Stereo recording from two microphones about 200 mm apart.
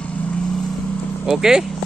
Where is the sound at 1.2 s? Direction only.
5° right (ahead or behind).